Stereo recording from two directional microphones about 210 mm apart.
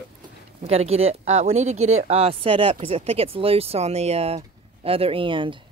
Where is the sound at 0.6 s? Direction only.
30° right (ahead or behind).